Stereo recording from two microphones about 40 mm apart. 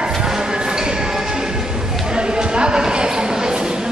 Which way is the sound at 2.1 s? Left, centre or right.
Right.